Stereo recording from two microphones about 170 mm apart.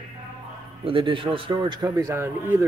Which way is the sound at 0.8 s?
30° right (ahead or behind).